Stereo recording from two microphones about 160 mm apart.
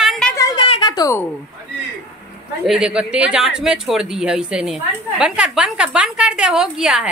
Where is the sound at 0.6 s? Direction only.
30° left (ahead or behind).